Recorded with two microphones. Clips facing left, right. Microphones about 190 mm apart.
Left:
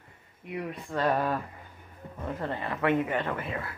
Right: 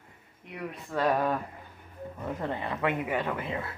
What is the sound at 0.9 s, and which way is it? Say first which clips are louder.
Speech: right 1 dB; 10° right (ahead or behind).